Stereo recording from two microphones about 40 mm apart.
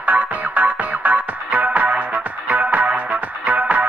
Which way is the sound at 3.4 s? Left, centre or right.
Right.